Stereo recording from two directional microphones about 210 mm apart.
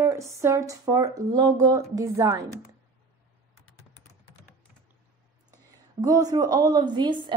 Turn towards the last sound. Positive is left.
turn(degrees=-20)  # may be behind; listen again after turning